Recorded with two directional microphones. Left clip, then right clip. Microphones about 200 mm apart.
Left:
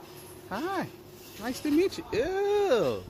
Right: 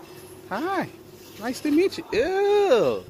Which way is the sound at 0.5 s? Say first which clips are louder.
Right 6 dB; 10° right (ahead or behind).